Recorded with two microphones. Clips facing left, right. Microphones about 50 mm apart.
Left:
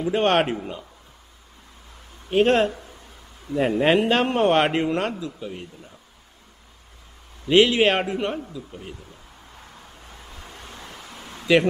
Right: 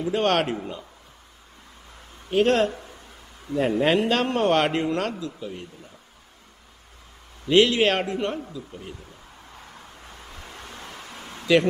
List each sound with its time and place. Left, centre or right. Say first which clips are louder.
0.0 s a man's voice: left 2 dB; left
2.3 s a man's voice: left 2 dB; left
7.4 s a man's voice: left 1 dB; centre
10.8 s a sound: right 1 dB; right